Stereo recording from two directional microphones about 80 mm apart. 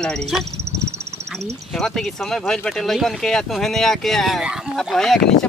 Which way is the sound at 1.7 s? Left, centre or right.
Centre.